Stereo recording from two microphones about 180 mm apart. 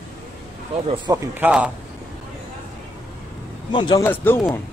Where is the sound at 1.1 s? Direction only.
20° right (ahead or behind).